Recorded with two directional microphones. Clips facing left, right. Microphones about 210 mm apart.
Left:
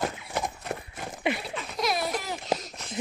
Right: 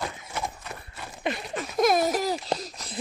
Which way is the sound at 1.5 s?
50° right (ahead or behind).